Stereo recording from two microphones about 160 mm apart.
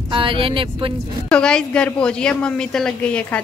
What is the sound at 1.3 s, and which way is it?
A woman's voice, 5° left (ahead or behind).